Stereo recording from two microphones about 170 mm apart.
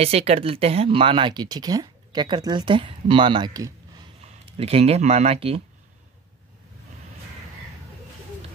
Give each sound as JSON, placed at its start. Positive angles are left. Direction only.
{"t": 0.0, "sound": "speech", "side_deg": -40}
{"t": 4.2, "sound": "speech", "side_deg": -35}